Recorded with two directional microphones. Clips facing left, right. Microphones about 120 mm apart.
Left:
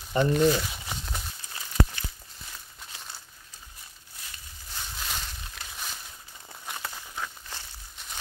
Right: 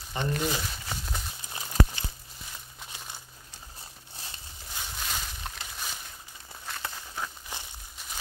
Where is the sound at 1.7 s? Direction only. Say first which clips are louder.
Even; 35° right (ahead or behind).